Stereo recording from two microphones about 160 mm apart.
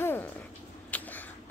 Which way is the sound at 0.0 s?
15° left (ahead or behind).